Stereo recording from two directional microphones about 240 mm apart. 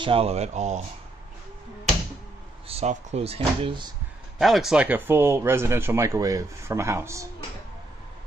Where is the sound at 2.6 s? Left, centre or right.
Right.